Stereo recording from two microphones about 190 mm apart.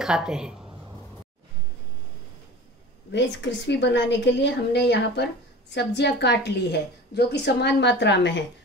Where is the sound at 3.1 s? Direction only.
65° left (ahead or behind).